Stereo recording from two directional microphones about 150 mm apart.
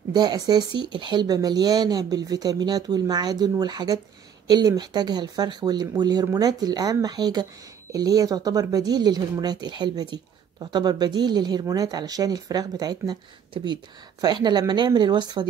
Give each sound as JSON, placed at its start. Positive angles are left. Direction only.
{"t": 0.1, "sound": "speech", "side_deg": -30}